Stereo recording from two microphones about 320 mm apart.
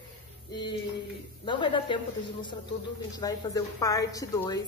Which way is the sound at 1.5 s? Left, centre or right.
Centre.